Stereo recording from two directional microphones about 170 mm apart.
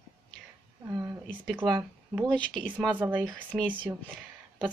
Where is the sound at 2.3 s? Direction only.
5° left (ahead or behind).